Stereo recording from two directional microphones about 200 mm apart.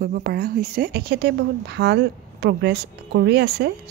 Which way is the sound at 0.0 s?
45° right (ahead or behind).